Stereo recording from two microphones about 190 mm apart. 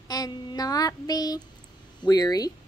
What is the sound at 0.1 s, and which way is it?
Child singing, 20° left (ahead or behind).